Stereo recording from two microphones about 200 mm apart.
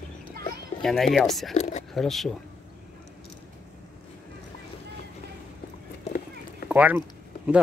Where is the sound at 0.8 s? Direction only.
Centre (ahead or behind).